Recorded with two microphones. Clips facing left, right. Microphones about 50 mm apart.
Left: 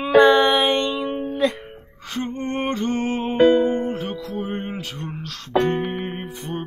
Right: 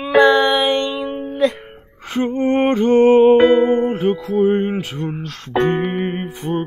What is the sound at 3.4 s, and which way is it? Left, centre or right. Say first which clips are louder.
Music: right 3 dB; centre.